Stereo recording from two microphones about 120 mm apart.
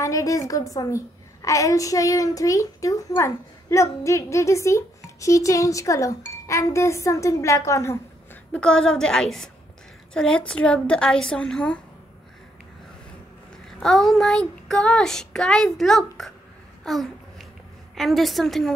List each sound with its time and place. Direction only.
0.0 s a woman's voice: 25° left (ahead or behind)
8.5 s child singing: 5° left (ahead or behind)
10.1 s a woman's voice: 5° left (ahead or behind)
13.7 s child singing: 5° left (ahead or behind)
16.8 s babbling: centre (ahead or behind)
17.9 s child singing: centre (ahead or behind)